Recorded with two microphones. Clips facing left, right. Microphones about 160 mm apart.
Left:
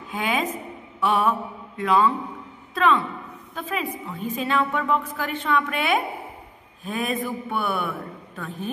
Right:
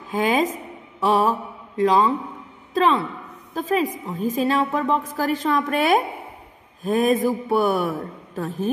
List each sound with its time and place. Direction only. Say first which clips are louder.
0.1 s a man's voice: right 5 dB; 40° right (ahead or behind)